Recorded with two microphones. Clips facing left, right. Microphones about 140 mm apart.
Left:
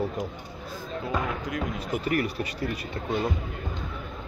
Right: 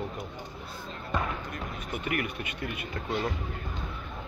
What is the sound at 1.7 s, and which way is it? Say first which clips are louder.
Speech: left 4 dB; 35° left (ahead or behind).